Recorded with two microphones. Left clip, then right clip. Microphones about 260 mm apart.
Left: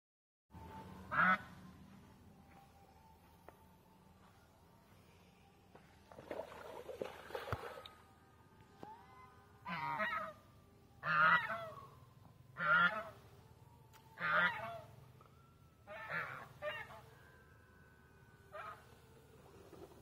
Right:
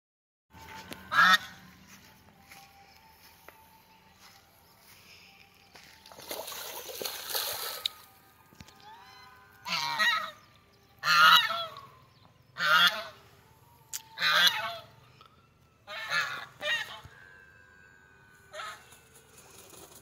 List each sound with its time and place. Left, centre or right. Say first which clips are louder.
6.2 s a sound: right 8 dB; centre
9.7 s goose: right 12 dB; centre
12.5 s goose: right 9 dB; centre
14.1 s goose: right 10 dB; centre
15.9 s goose: right 12 dB; centre